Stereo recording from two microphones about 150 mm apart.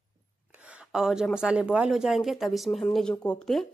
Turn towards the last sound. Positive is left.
turn(degrees=5)  # may be behind; listen again after turning